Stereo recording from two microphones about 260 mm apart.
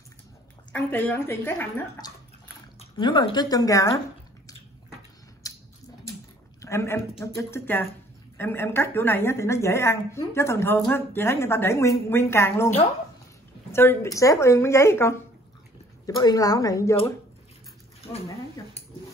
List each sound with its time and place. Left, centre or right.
0.7 s a woman's voice: centre
5.4 s a sound: centre
6.6 s a woman's voice: centre
16.2 s a woman's voice: centre